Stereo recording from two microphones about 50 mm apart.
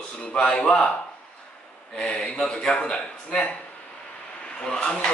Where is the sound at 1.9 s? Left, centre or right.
Centre.